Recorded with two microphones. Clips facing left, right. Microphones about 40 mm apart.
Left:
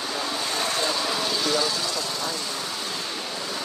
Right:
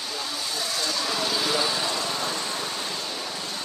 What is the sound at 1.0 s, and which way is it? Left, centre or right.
Vehicle, centre.